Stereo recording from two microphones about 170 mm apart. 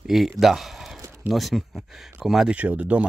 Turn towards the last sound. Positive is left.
turn(degrees=-10)  # may be behind; listen again after turning